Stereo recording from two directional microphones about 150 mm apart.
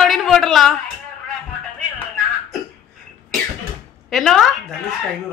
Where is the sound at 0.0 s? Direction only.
Centre (ahead or behind).